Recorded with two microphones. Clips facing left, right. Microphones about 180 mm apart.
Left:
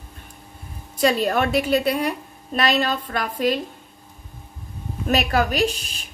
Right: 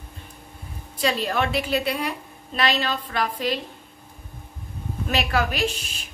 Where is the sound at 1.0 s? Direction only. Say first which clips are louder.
Left 4 dB; 50° left (ahead or behind).